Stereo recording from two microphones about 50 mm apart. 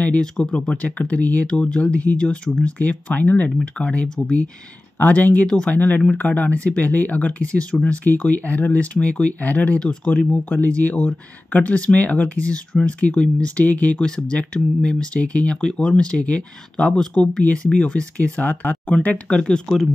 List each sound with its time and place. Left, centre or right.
0.2 s speech: centre
3.2 s speech: left
9.8 s speech: centre
10.5 s speech: left
13.9 s speech: centre; by 18.9 s left
19.2 s speech: centre